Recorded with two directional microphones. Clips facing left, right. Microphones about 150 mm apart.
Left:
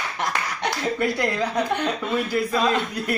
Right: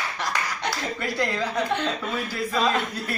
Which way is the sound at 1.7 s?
15° left (ahead or behind).